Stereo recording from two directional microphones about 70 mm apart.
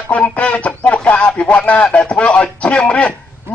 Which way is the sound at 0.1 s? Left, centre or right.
Centre.